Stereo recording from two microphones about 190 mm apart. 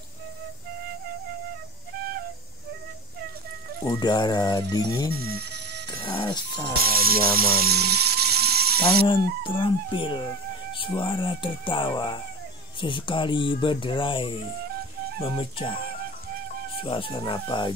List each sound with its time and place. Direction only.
2.0 s flute: 50° right (ahead or behind)
3.8 s speech: 20° left (ahead or behind)
5.1 s speech: 55° right (ahead or behind)
6.1 s speech: 25° left (ahead or behind)
6.8 s speech: 50° right (ahead or behind)
9.0 s speech: 25° left (ahead or behind)
16.8 s speech: 30° left (ahead or behind)